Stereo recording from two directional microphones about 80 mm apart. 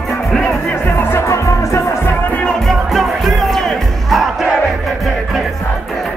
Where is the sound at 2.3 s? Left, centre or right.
Centre.